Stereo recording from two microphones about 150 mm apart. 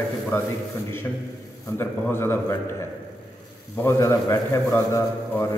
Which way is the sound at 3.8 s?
20° left (ahead or behind).